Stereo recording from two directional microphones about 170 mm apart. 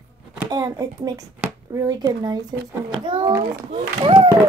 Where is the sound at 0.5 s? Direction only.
25° right (ahead or behind).